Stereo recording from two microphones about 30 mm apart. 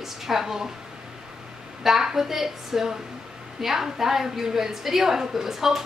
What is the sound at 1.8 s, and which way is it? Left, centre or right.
A woman's voice, centre.